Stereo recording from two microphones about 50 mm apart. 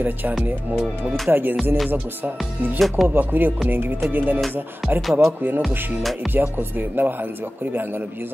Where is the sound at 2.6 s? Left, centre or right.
Right.